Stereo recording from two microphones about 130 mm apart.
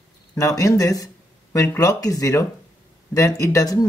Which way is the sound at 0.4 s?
25° left (ahead or behind).